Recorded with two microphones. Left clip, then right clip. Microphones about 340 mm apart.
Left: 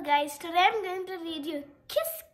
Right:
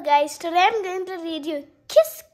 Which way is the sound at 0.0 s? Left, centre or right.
Centre.